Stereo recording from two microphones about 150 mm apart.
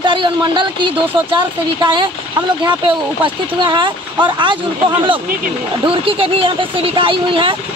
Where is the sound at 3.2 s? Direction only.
30° right (ahead or behind).